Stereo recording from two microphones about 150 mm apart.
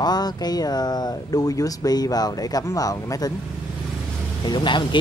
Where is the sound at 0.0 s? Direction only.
25° left (ahead or behind).